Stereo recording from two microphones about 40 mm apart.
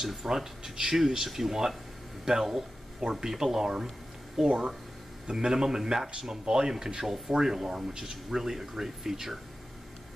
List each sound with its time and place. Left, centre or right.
0.0 s a man's voice: centre